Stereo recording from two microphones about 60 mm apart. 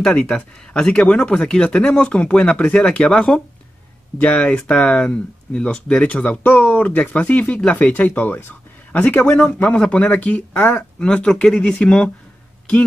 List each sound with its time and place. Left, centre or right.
0.0 s speech: centre